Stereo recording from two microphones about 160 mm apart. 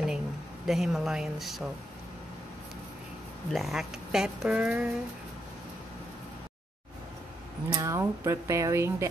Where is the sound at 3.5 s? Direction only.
Centre (ahead or behind).